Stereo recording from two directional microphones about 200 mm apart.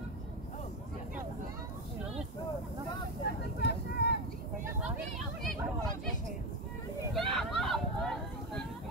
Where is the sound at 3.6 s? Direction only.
55° left (ahead or behind).